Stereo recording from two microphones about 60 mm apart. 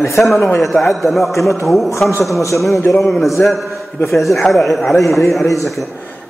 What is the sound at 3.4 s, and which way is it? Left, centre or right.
Speech, left.